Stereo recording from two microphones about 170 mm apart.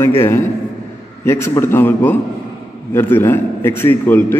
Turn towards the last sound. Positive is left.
turn(degrees=10)  # may be behind; listen again after turning